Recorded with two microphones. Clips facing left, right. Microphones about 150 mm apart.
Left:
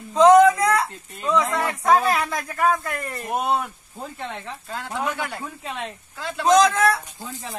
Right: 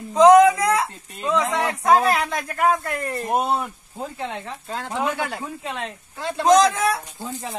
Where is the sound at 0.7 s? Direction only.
25° right (ahead or behind).